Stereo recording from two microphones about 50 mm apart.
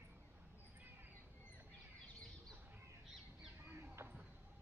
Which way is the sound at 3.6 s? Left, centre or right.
Right.